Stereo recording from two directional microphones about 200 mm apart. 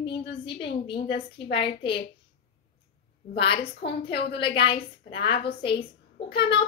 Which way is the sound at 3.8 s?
55° left (ahead or behind).